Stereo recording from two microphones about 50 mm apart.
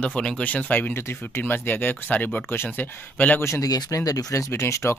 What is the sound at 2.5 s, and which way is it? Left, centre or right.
Speech, left.